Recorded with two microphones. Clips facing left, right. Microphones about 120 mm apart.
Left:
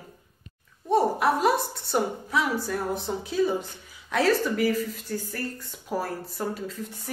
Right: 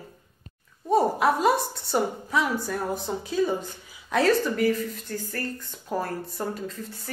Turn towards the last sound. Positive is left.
turn(degrees=5)  # may be behind; listen again after turning